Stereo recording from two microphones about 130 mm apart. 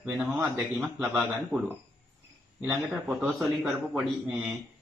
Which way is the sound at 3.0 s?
5° right (ahead or behind).